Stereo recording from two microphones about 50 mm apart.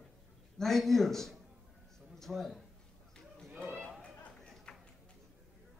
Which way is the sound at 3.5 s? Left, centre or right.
Right.